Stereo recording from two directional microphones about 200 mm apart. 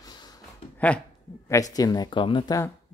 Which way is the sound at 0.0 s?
20° left (ahead or behind).